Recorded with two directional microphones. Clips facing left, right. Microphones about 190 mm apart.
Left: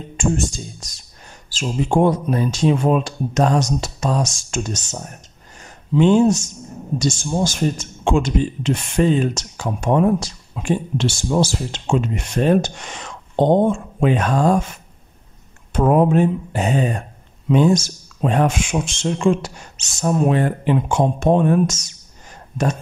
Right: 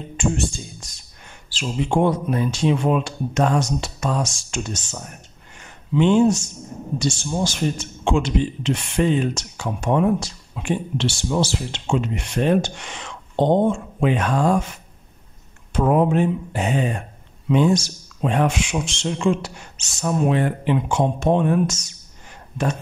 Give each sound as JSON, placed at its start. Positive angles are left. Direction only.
{"t": 0.2, "sound": "a man's voice", "side_deg": 40}
{"t": 5.6, "sound": "a sound", "side_deg": 40}
{"t": 7.0, "sound": "a man's voice", "side_deg": 45}
{"t": 15.7, "sound": "a man's voice", "side_deg": 45}